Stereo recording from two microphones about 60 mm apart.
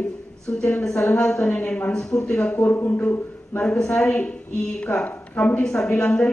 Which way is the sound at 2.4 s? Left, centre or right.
Left.